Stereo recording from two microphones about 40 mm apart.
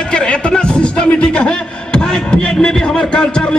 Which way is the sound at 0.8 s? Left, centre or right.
Left.